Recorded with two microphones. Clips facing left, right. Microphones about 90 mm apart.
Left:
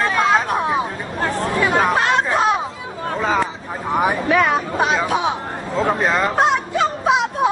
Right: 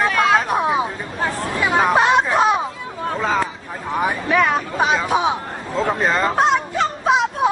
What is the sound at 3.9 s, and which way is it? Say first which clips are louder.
Speech: left 2 dB; 15° left (ahead or behind).